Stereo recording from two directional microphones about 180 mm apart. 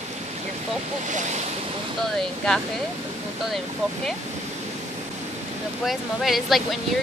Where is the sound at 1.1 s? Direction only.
40° right (ahead or behind).